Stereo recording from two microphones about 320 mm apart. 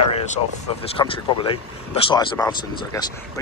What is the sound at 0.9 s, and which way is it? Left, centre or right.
Speech, centre.